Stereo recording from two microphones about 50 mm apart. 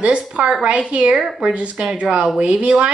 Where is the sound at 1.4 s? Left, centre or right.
Right.